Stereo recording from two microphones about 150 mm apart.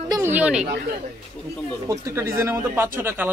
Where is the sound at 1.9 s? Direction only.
20° right (ahead or behind).